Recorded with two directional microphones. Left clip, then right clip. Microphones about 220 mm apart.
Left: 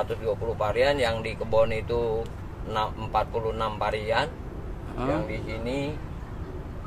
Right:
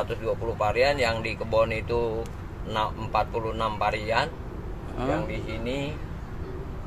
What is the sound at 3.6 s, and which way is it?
Speech, 5° right (ahead or behind).